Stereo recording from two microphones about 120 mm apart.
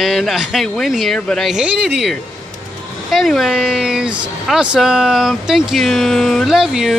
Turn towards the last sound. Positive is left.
turn(degrees=-5)  # may be behind; listen again after turning